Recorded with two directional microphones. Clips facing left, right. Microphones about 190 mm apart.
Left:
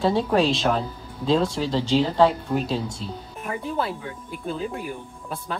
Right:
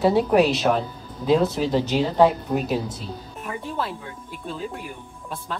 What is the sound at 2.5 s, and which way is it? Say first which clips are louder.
Speech: right 1 dB; 20° right (ahead or behind).